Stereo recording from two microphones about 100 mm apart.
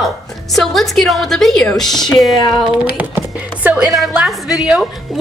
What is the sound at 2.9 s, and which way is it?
Speech, 15° right (ahead or behind).